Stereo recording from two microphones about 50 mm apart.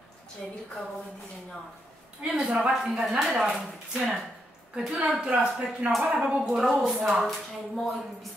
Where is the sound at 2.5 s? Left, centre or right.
Centre; by 6.3 s right.